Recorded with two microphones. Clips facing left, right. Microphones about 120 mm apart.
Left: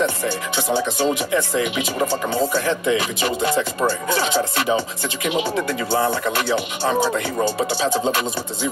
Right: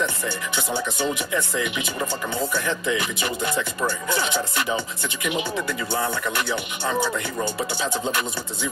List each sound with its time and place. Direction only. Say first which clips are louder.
0.6 s speech: left 6 dB; 25° left (ahead or behind)